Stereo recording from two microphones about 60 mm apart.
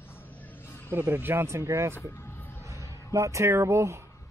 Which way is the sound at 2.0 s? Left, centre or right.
Left.